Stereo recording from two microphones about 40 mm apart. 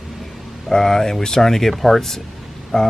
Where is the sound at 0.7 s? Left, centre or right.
Centre.